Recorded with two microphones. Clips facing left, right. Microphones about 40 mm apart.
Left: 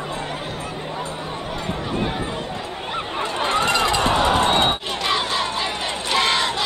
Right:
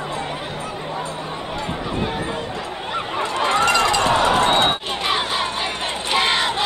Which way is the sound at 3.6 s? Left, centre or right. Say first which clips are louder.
Right 2 dB; centre.